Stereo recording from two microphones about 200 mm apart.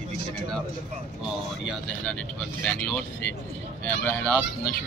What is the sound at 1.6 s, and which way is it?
Speech, centre (ahead or behind).